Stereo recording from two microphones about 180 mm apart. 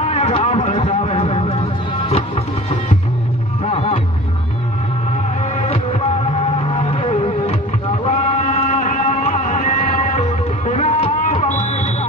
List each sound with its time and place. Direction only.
0.0 s a sound: 35° left (ahead or behind)
2.0 s music: 35° left (ahead or behind)
3.6 s music: 35° left (ahead or behind)
5.7 s music: 35° left (ahead or behind)